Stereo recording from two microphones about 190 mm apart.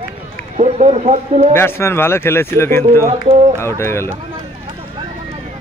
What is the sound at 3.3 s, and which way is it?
Speech, 35° right (ahead or behind).